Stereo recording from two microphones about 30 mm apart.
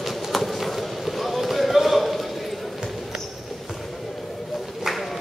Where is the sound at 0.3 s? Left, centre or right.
Centre.